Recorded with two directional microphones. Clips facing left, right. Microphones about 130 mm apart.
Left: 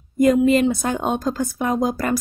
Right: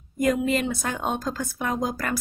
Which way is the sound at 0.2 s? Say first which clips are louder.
Left 8 dB; 25° left (ahead or behind).